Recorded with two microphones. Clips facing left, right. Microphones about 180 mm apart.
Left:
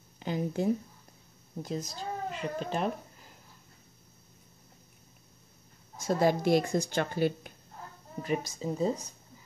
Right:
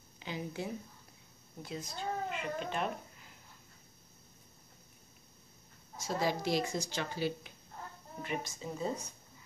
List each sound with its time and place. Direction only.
0.2 s speech: 45° left (ahead or behind)
5.9 s speech: 55° left (ahead or behind)
8.2 s speech: 40° left (ahead or behind)